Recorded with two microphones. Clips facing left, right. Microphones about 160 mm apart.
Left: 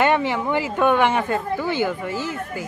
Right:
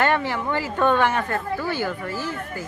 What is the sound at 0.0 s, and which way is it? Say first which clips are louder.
Speech: left 3 dB; 15° left (ahead or behind).